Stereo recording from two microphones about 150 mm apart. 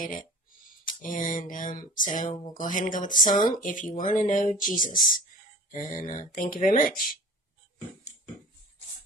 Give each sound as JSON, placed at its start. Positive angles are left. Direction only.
{"t": 0.0, "sound": "speech", "side_deg": 65}